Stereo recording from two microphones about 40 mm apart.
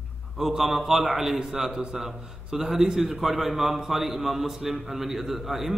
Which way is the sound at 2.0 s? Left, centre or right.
Centre.